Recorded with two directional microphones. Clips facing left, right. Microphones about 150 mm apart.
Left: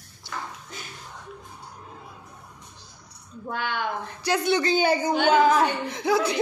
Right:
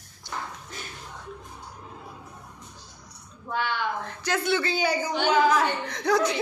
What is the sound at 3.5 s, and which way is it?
Speech, 50° left (ahead or behind).